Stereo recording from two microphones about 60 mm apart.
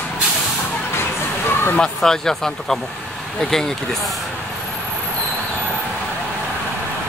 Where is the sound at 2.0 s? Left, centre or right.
Centre.